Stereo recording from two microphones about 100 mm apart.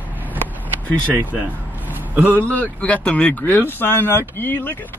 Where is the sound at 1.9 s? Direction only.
20° right (ahead or behind).